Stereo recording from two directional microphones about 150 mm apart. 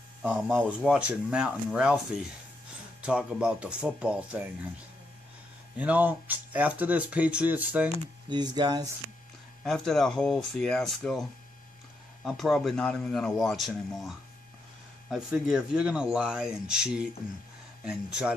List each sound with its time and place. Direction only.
0.2 s speech: 10° right (ahead or behind)
5.8 s speech: 10° right (ahead or behind)
8.3 s speech: 30° right (ahead or behind)
9.6 s speech: centre (ahead or behind)